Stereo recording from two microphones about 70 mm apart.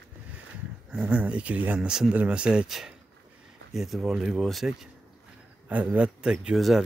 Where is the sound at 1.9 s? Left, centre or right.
Centre.